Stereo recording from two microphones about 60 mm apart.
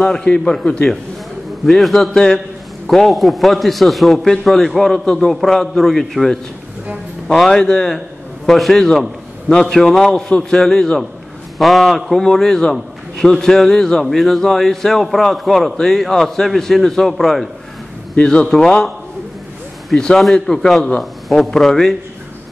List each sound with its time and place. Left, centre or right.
0.0 s a man's voice: centre
1.7 s a man's voice: centre
18.1 s a man's voice: centre
20.3 s a man's voice: centre